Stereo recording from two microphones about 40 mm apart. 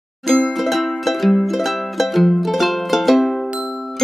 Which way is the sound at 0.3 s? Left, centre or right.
Centre.